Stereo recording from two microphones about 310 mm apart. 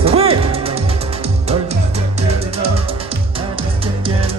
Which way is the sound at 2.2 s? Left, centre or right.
Centre.